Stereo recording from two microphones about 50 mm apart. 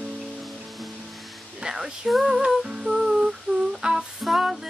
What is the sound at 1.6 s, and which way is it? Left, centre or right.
Humming, centre.